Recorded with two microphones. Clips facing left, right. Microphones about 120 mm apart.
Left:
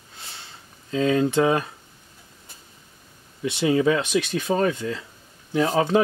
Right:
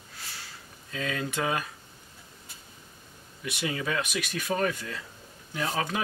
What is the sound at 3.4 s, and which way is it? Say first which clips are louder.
Speech: left 12 dB; 25° left (ahead or behind).